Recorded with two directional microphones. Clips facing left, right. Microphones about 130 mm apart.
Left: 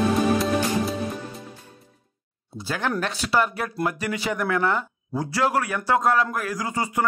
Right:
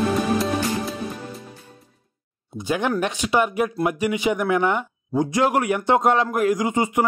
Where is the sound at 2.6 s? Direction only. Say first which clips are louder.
Right 4 dB; 15° right (ahead or behind).